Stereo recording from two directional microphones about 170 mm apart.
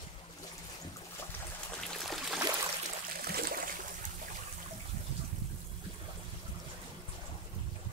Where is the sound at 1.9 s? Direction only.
Centre (ahead or behind).